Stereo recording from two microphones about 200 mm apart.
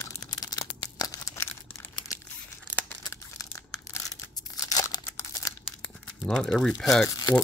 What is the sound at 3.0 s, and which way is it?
Tearing, 15° left (ahead or behind).